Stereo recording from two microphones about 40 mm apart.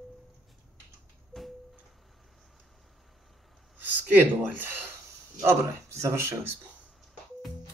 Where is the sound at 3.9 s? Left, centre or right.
Right.